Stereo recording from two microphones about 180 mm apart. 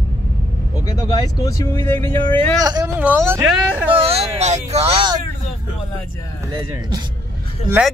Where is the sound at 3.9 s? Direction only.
35° right (ahead or behind).